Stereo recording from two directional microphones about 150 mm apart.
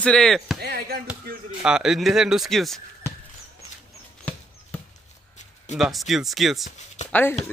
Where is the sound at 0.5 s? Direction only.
90° right.